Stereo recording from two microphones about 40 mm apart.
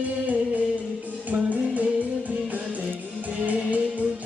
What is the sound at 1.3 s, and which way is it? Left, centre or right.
Music, right.